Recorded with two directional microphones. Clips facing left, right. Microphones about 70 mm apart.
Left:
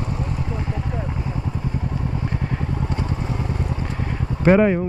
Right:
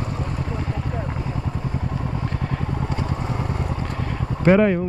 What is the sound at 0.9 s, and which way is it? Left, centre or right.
Vehicle, right.